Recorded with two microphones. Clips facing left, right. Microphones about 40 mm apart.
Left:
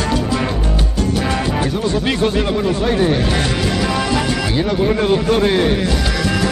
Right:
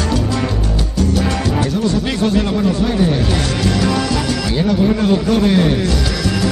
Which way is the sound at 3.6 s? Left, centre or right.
Centre.